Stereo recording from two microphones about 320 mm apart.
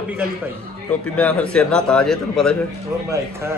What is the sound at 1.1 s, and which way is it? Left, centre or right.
Speech, centre.